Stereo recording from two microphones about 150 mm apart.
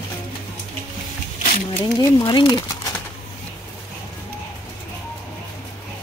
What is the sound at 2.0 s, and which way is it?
Speech, 30° left (ahead or behind).